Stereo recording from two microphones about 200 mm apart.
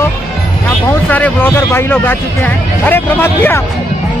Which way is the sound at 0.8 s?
10° left (ahead or behind).